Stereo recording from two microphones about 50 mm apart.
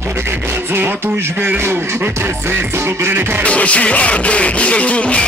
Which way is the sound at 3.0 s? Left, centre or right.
Right.